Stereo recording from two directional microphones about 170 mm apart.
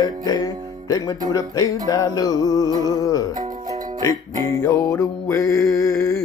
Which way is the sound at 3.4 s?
20° right (ahead or behind).